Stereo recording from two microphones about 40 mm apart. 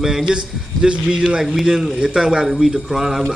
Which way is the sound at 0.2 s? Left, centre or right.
Right.